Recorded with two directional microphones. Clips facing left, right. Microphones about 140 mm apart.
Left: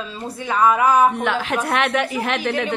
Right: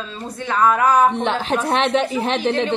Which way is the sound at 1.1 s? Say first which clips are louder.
Right 1 dB; 30° right (ahead or behind).